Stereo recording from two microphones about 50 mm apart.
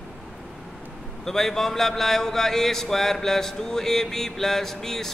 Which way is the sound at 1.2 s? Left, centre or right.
Centre.